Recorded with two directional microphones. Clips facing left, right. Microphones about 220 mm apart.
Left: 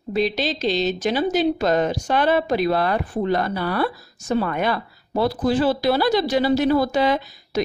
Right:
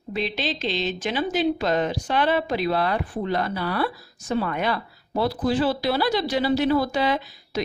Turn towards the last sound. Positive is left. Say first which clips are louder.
# left 4 dB
turn(degrees=45)  # may be behind; listen again after turning